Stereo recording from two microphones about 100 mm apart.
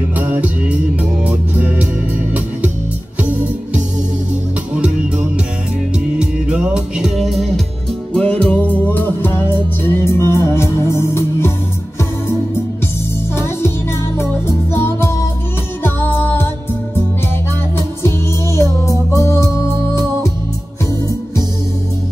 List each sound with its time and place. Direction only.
0.2 s music: 15° right (ahead or behind)
1.2 s organ: 15° right (ahead or behind)
3.2 s music: 15° right (ahead or behind)
4.7 s music: 10° right (ahead or behind)
8.1 s music: 10° left (ahead or behind); by 11.5 s 25° left (ahead or behind)
14.1 s music: 25° left (ahead or behind)
17.7 s music: 30° left (ahead or behind)